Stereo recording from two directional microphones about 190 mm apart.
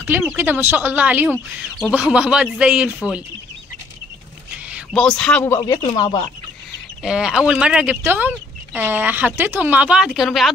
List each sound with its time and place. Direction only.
0.0 s speech: 10° right (ahead or behind)
4.6 s a sound: 5° right (ahead or behind)
5.0 s speech: 5° left (ahead or behind); by 6.2 s 25° left (ahead or behind)
7.0 s speech: 5° right (ahead or behind)